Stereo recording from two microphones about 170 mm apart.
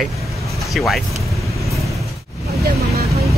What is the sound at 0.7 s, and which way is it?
Speech, centre (ahead or behind).